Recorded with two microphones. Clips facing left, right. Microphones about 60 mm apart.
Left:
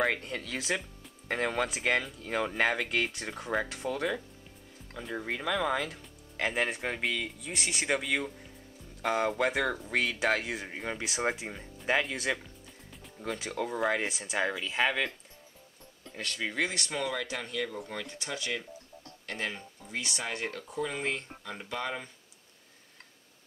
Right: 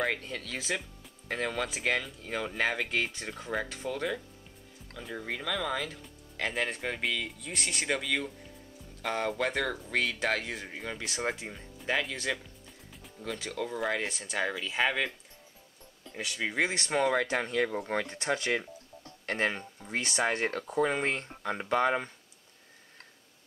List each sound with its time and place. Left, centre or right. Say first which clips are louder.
0.3 s speech: left 1 dB; left
1.7 s speech: left 1 dB; centre
2.6 s speech: even; centre
3.8 s speech: left 1 dB; left
5.1 s speech: left 2 dB; centre
13.5 s speech: left 1 dB; left
13.7 s speech: left 3 dB; centre
16.2 s speech: right 2 dB; centre
16.6 s speech: right 5 dB; right